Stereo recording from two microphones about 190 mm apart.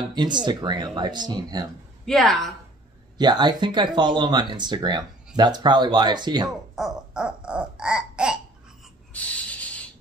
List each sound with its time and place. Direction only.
0.1 s speech: 25° right (ahead or behind)
2.0 s a woman's voice: centre (ahead or behind)
3.2 s speech: 25° right (ahead or behind)
6.7 s babbling: 5° right (ahead or behind)
9.1 s a sound: 5° left (ahead or behind)